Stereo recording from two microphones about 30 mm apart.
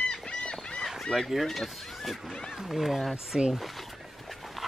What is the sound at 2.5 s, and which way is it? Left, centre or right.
Speech, centre.